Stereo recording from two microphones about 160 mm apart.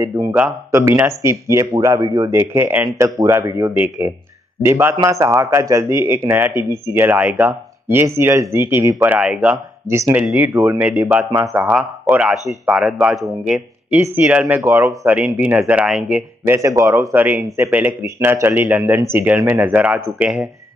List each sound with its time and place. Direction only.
0.0 s speech: 15° right (ahead or behind)
15.1 s speech: 5° right (ahead or behind)
16.5 s speech: 20° right (ahead or behind)